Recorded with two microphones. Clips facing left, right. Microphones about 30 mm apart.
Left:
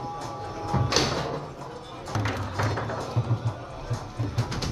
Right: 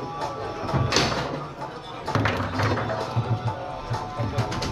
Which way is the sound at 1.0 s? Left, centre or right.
Right.